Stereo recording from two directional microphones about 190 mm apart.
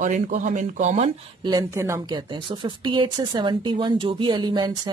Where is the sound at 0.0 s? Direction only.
40° right (ahead or behind).